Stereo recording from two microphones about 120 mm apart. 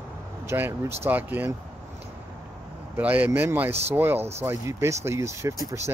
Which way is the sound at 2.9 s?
15° right (ahead or behind).